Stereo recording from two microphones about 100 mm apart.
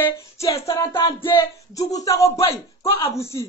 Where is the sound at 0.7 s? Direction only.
30° left (ahead or behind).